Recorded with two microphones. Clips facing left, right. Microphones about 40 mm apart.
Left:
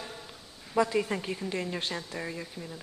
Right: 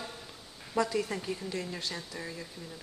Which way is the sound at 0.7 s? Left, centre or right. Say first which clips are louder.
Left 3 dB; left.